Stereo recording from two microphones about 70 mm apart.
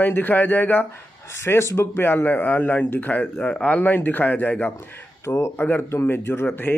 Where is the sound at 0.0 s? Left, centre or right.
Left.